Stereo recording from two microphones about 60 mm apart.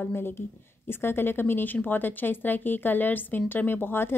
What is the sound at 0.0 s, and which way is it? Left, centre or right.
Speech, left.